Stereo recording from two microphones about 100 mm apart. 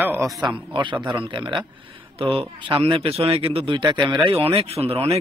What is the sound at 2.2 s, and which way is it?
Speech, 65° right (ahead or behind).